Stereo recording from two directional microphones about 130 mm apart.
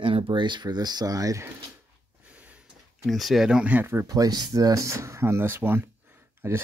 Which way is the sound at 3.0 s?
Centre (ahead or behind).